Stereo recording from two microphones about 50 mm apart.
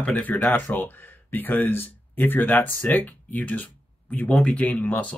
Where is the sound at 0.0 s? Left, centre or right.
Left.